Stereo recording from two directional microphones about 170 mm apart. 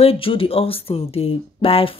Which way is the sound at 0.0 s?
35° left (ahead or behind).